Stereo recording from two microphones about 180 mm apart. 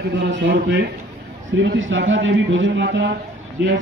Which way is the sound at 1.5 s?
90° right.